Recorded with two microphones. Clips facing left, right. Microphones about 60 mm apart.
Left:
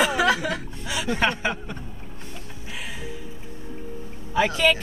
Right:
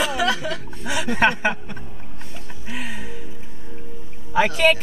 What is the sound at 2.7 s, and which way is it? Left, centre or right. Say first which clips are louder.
Music: right 5 dB; right.